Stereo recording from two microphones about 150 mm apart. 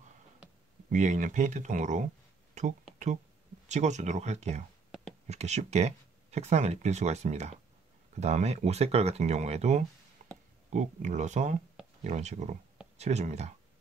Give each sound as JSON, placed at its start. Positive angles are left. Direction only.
{"t": 0.8, "sound": "speech", "side_deg": -55}
{"t": 2.6, "sound": "a sound", "side_deg": -55}
{"t": 3.6, "sound": "speech", "side_deg": -50}